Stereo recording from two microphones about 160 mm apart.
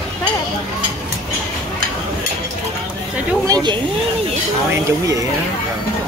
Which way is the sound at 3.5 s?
25° right (ahead or behind).